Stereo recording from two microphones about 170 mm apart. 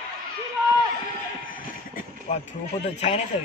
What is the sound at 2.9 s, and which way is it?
Speech, 40° left (ahead or behind).